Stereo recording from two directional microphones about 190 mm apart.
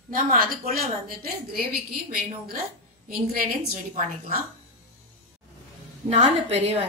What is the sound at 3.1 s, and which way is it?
A woman's voice, 50° right (ahead or behind).